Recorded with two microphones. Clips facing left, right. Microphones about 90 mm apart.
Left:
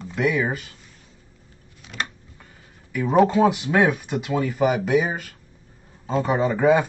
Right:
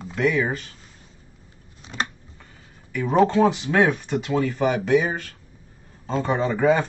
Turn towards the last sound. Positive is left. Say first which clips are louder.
# left 2 dB
turn(degrees=10)  # may be behind; listen again after turning